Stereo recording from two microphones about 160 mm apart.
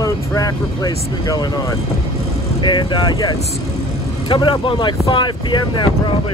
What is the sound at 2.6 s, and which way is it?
Speech, 30° left (ahead or behind).